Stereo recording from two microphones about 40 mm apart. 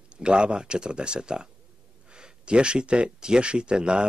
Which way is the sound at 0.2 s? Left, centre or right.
Right.